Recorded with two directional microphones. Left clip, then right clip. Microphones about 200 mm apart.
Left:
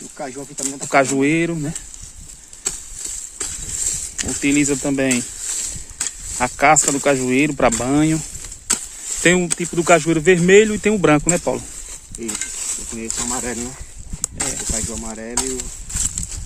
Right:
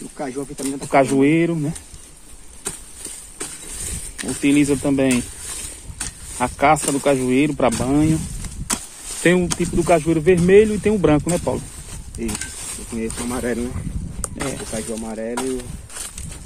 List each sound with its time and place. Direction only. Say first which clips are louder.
0.2 s speech: right 1 dB; 25° left (ahead or behind)
3.3 s a sound: left 4 dB; 20° left (ahead or behind)
6.9 s speech: left 1 dB; 25° left (ahead or behind)
9.2 s speech: left 1 dB; 25° left (ahead or behind)
9.6 s speech: left 2 dB; 40° left (ahead or behind)
12.7 s a sound: even; 25° left (ahead or behind)
13.3 s speech: right 4 dB; 55° left (ahead or behind)
14.9 s speech: right 3 dB; 65° left (ahead or behind)
15.3 s a sound: even; 35° left (ahead or behind)